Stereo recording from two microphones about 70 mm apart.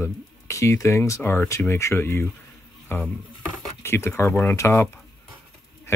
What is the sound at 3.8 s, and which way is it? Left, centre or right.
Speech, left.